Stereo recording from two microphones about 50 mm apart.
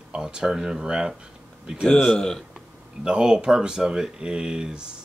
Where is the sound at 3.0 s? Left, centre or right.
Centre.